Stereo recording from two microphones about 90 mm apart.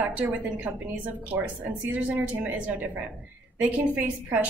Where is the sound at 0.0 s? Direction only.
15° right (ahead or behind).